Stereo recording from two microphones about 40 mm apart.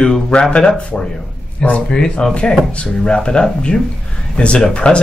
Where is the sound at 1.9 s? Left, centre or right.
Centre.